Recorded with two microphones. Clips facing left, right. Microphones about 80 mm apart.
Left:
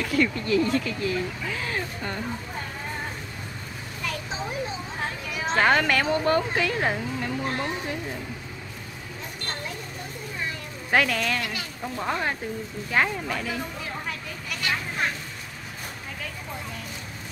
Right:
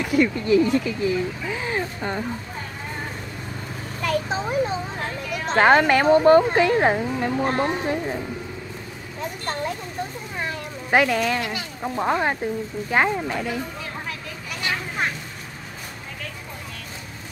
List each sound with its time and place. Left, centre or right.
0.0 s speech: centre
4.0 s a sound: right
5.3 s a woman's voice: centre
5.6 s speech: right
10.9 s speech: centre
14.6 s vehicle: centre